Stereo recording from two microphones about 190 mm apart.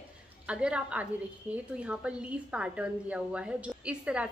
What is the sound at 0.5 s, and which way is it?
A woman's voice, 5° right (ahead or behind).